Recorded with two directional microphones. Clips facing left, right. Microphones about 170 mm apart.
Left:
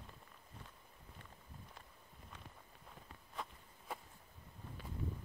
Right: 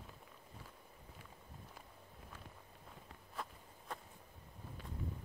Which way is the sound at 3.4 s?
Centre (ahead or behind).